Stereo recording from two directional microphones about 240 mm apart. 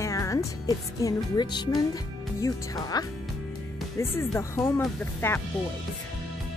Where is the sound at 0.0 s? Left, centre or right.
Centre.